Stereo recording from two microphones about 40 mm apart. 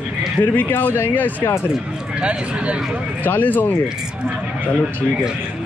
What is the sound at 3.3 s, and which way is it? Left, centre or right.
Speech, left.